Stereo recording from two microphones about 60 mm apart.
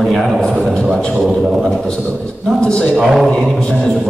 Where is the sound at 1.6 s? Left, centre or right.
Centre.